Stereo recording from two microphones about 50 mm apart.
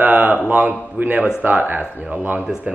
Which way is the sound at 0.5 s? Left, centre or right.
Right.